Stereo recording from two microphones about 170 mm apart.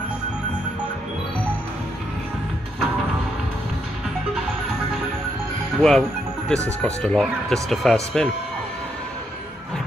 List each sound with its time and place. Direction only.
5.8 s speech: 5° left (ahead or behind)